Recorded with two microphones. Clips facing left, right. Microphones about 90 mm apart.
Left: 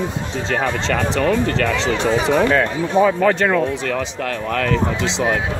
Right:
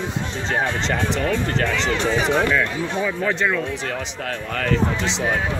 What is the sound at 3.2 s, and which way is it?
Speech, 65° left (ahead or behind).